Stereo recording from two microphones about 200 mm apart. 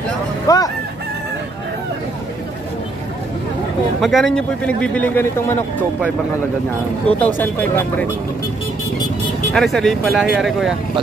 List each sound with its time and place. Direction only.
0.5 s a man's voice: 15° left (ahead or behind)
4.0 s a man's voice: centre (ahead or behind)
7.2 s a man's voice: 10° left (ahead or behind)
9.5 s speech: centre (ahead or behind)